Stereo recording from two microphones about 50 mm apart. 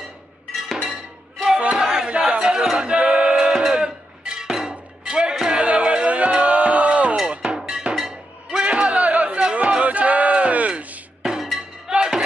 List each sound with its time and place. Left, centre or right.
0.8 s music: centre
1.6 s battle cry: centre
2.0 s a sound: centre
5.5 s music: right
7.2 s music: centre
8.6 s a sound: right
11.9 s music: centre